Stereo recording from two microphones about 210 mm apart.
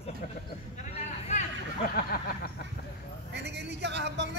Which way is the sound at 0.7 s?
35° left (ahead or behind).